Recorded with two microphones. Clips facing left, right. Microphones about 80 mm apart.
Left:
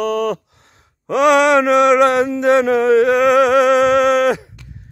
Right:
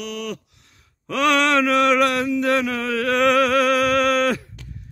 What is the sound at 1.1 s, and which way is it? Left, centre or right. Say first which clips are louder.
Mantra: left 7 dB; centre.